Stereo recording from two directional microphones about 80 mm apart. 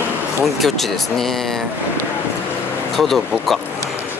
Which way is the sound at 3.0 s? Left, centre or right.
Centre.